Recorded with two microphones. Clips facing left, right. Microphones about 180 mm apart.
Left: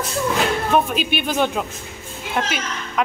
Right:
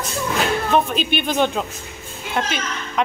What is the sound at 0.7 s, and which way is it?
A woman's voice, 5° left (ahead or behind).